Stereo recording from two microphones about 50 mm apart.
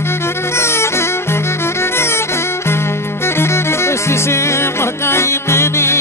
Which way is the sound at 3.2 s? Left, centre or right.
Left.